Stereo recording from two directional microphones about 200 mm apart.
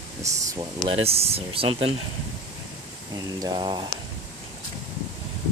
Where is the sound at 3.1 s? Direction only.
20° right (ahead or behind).